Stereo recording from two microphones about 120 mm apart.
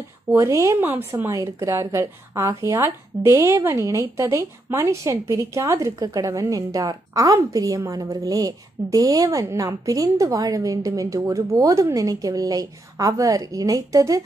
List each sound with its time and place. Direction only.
0.3 s a woman's voice: 25° right (ahead or behind)